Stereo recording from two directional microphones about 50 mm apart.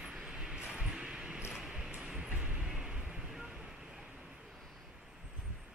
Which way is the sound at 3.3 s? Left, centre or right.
Centre.